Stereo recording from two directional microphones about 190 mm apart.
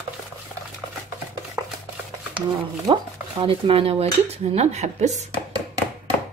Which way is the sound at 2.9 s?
25° right (ahead or behind).